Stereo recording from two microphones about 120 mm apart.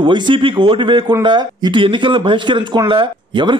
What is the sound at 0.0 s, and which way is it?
A man's voice, 45° right (ahead or behind).